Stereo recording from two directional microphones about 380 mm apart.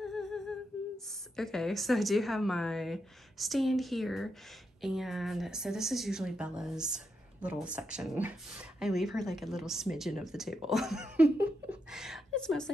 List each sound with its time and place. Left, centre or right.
0.0 s humming: centre
1.3 s a woman's voice: centre